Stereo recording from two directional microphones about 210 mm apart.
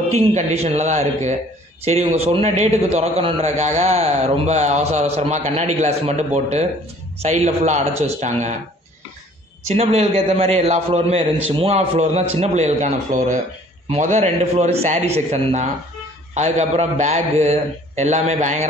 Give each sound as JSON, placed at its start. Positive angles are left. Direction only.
{"t": 0.3, "sound": "a man's voice", "side_deg": -30}
{"t": 9.8, "sound": "a man's voice", "side_deg": -30}